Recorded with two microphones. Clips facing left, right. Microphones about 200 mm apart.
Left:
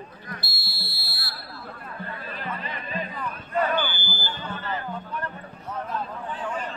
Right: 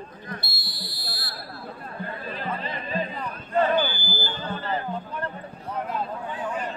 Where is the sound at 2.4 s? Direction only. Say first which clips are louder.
Right 3 dB; 30° right (ahead or behind).